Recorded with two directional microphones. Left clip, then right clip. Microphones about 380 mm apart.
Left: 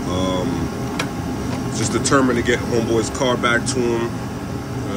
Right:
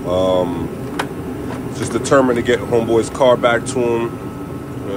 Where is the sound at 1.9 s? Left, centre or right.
Centre.